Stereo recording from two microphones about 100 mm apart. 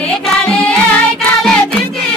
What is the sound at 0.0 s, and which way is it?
Music, 10° left (ahead or behind).